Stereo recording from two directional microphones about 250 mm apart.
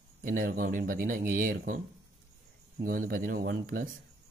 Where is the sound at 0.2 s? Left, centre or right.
Right.